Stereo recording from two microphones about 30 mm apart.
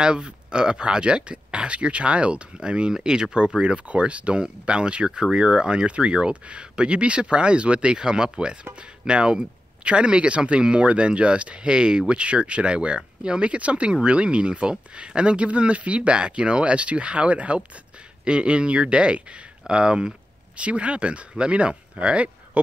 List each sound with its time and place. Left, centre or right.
0.0 s speech: right
5.0 s speech: right
5.9 s speech: right
18.2 s speech: right
20.5 s speech: right